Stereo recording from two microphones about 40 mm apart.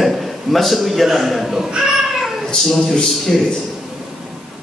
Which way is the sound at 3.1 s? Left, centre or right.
Centre.